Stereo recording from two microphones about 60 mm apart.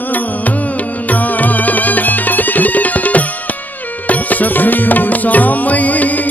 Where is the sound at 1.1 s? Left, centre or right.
Left.